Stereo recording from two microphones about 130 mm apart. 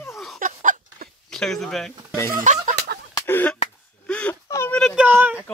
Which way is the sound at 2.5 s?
75° right (ahead or behind).